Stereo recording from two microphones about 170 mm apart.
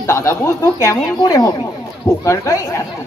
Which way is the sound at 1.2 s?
25° left (ahead or behind).